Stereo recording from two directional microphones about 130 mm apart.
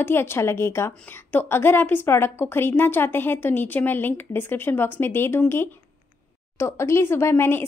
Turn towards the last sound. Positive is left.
turn(degrees=20)  # may be behind; listen again after turning